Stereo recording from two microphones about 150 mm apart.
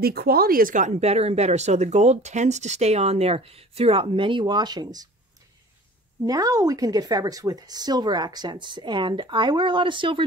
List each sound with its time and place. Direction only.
0.0 s speech: 90° right; by 5.0 s 30° right (ahead or behind)
6.2 s speech: 25° right (ahead or behind)